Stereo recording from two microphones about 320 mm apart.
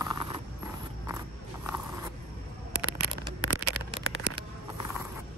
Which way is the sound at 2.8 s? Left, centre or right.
Right.